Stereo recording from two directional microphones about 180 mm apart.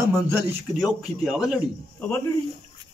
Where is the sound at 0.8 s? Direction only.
Centre (ahead or behind).